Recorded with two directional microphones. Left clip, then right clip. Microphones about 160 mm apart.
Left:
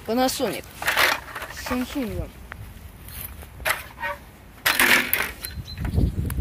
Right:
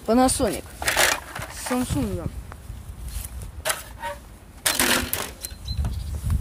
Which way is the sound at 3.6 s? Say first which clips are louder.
Left 3 dB; 20° right (ahead or behind).